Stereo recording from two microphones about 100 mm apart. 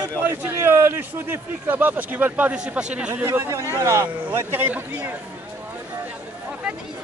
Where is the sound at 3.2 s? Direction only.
30° right (ahead or behind).